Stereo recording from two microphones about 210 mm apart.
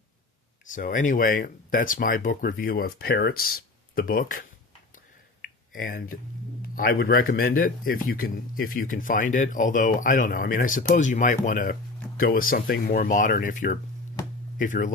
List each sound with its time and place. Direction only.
0.7 s a man's voice: 40° left (ahead or behind)
5.7 s a man's voice: 40° left (ahead or behind)